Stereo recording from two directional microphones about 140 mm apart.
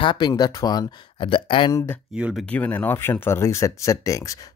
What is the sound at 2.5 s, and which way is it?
Speech, 10° left (ahead or behind).